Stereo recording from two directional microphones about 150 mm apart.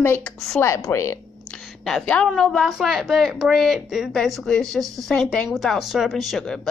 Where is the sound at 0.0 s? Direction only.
15° left (ahead or behind).